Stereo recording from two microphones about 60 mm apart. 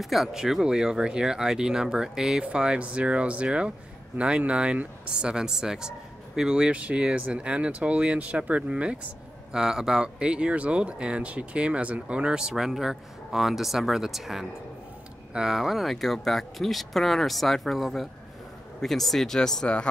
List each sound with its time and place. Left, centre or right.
0.0 s speech: centre